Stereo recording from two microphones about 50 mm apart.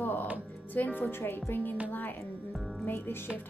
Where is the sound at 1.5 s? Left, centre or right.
Left.